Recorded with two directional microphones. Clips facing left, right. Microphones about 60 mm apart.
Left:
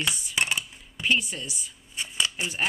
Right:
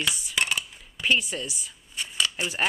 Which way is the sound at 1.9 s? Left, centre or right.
Centre.